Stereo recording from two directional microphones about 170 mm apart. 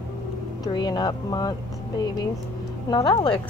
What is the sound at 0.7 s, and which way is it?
Speech, 25° left (ahead or behind).